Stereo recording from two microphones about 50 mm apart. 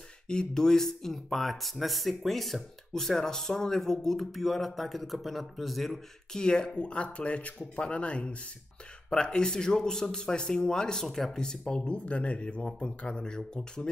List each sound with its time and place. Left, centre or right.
0.3 s speech: centre
6.4 s speech: centre